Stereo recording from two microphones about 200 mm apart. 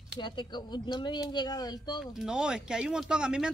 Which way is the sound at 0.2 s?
20° left (ahead or behind).